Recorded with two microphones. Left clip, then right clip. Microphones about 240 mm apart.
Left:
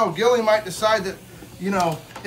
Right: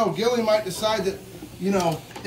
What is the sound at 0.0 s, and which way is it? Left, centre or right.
Speech, centre.